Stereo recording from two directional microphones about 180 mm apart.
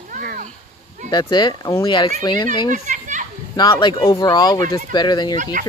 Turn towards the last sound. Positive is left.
turn(degrees=25)  # may be behind; listen again after turning